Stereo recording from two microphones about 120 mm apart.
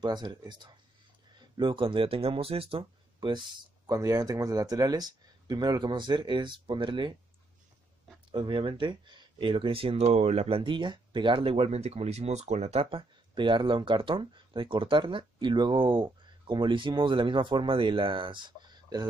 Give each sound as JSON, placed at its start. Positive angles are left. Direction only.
{"t": 0.0, "sound": "speech", "side_deg": -35}
{"t": 8.3, "sound": "speech", "side_deg": -45}
{"t": 10.0, "sound": "speech", "side_deg": -70}
{"t": 12.9, "sound": "speech", "side_deg": -45}